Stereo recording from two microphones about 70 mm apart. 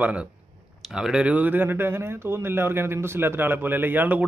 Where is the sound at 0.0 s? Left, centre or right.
Centre.